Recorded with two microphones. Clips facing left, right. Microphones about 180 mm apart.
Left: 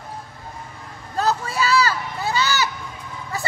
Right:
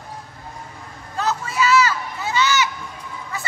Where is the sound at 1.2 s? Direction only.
35° left (ahead or behind).